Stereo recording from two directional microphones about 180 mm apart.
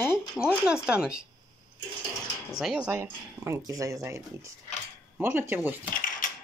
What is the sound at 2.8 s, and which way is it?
Speech, 15° right (ahead or behind).